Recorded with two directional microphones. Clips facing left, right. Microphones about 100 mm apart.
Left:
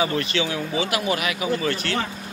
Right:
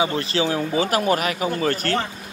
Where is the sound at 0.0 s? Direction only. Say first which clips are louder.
Right 2 dB; 30° right (ahead or behind).